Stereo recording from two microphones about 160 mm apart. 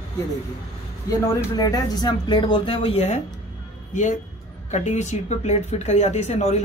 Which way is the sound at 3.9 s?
50° left (ahead or behind).